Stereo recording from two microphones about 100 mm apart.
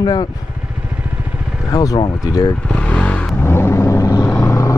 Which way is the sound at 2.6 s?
10° left (ahead or behind).